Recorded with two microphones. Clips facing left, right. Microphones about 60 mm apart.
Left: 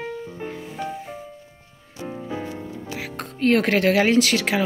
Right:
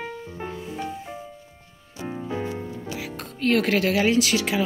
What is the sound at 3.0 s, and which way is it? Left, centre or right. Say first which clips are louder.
Speech: left 7 dB; left.